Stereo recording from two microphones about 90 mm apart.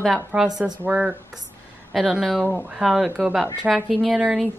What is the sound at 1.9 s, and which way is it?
Speech, centre (ahead or behind).